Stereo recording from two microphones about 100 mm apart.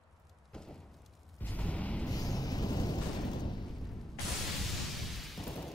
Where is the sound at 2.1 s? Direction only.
40° left (ahead or behind).